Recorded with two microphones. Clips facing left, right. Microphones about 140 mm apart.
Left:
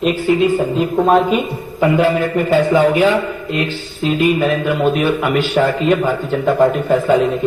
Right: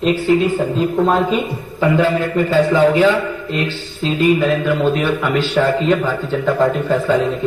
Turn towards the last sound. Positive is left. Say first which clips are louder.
# left 2 dB
turn(degrees=15)  # may be behind; listen again after turning